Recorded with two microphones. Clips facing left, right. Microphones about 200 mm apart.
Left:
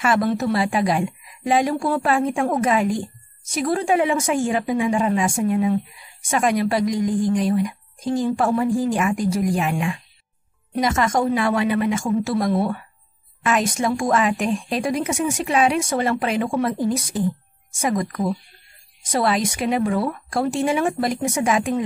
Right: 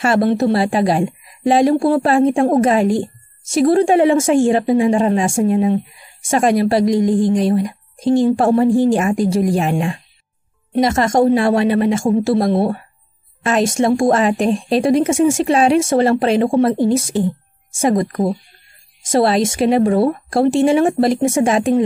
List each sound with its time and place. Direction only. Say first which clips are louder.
0.0 s a woman's voice: right 5 dB; 30° right (ahead or behind)